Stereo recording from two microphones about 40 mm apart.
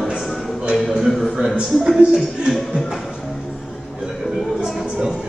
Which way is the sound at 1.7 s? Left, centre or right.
Centre.